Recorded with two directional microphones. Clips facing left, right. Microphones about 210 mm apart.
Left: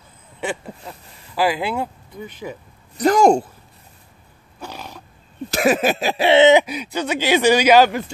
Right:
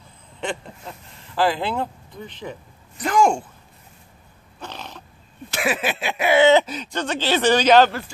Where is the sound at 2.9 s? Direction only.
40° left (ahead or behind).